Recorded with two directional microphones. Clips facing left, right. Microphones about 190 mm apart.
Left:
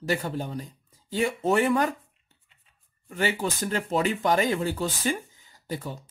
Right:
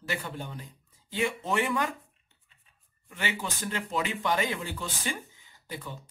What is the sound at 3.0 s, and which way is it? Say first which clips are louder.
Speech: left 7 dB; 40° left (ahead or behind).